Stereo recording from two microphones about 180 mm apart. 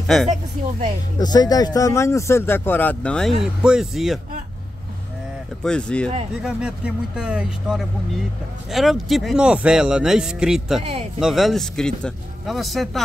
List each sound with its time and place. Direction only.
0.0 s speech: centre (ahead or behind)
0.3 s speech: 40° right (ahead or behind)
1.2 s speech: 20° left (ahead or behind); by 4.2 s centre (ahead or behind)
5.6 s speech: 5° left (ahead or behind)
6.4 s speech: 5° right (ahead or behind)
10.8 s speech: 35° right (ahead or behind)
11.1 s speech: centre (ahead or behind)